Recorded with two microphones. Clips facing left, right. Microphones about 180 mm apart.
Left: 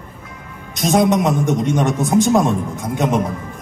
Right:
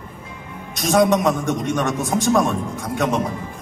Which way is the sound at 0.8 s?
20° left (ahead or behind).